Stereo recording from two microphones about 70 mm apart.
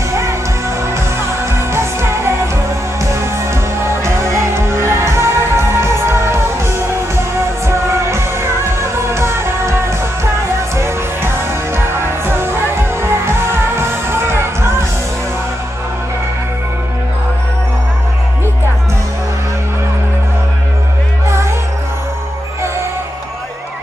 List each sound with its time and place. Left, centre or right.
0.1 s music: right
21.3 s music: right